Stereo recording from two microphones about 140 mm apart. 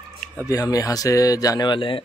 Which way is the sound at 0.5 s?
25° left (ahead or behind).